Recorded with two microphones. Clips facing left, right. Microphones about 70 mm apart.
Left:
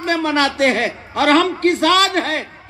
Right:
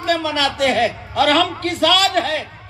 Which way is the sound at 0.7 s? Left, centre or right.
Left.